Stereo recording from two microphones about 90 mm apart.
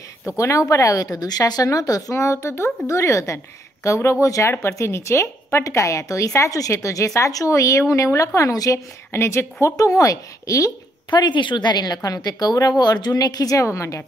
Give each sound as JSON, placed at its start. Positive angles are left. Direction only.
{"t": 0.4, "sound": "speech", "side_deg": 35}
{"t": 11.1, "sound": "a woman's voice", "side_deg": 55}